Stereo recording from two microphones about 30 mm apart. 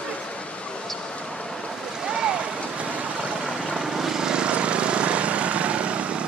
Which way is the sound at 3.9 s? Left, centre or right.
Centre.